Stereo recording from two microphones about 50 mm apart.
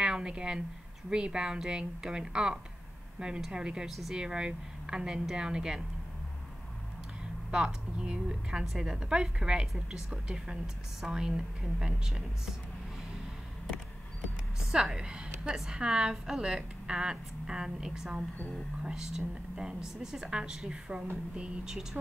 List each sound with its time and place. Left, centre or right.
0.0 s a sound: centre
1.1 s a woman's voice: centre
7.5 s a woman's voice: centre
14.6 s a woman's voice: centre
15.5 s a woman's voice: centre